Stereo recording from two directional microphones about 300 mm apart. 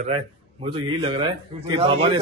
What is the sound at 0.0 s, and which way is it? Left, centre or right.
A man's voice, centre.